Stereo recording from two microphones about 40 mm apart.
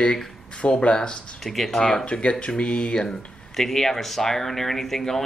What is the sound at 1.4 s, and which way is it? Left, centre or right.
Speech, centre.